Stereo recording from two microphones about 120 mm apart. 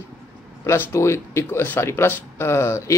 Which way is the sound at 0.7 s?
25° left (ahead or behind).